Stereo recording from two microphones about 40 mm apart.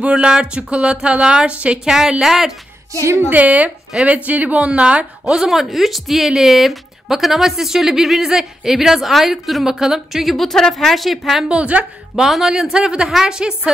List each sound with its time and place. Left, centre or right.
0.1 s a woman's voice: centre
1.9 s speech: centre
3.3 s speech: right
5.2 s speech: centre
10.2 s a woman's voice: centre
11.4 s a woman's voice: right
12.1 s speech: centre